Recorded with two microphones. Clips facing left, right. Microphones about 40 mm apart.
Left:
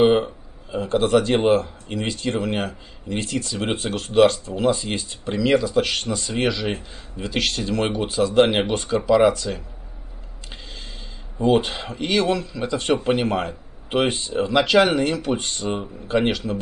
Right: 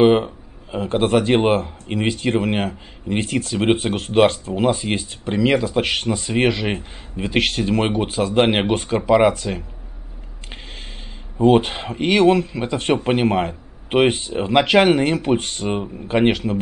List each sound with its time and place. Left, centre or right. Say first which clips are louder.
0.0 s speech: right 2 dB; right
11.3 s speech: right 4 dB; right